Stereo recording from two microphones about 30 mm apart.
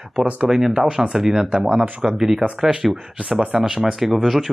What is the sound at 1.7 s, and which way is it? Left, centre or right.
Speech, right.